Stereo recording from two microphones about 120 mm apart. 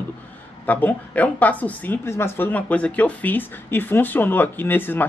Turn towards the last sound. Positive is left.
turn(degrees=15)  # may be behind; listen again after turning